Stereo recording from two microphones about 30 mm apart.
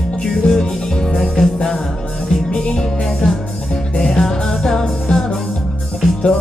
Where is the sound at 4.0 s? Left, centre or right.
Centre.